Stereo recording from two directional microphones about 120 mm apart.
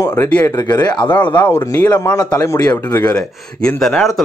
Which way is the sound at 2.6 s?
15° left (ahead or behind).